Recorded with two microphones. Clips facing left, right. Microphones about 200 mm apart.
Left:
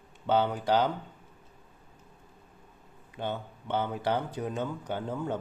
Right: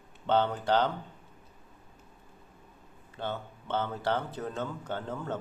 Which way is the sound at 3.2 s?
15° left (ahead or behind).